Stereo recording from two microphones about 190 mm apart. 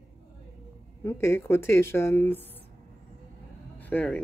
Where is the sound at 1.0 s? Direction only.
15° left (ahead or behind).